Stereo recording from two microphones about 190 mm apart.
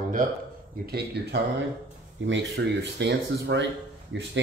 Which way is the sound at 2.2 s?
70° right (ahead or behind).